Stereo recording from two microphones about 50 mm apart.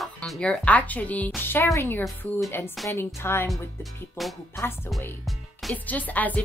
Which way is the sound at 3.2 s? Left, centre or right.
Left.